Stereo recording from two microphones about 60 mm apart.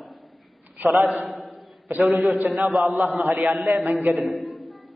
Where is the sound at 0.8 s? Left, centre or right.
Right.